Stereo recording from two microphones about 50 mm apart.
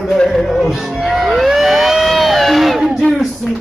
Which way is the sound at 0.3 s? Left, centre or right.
Centre.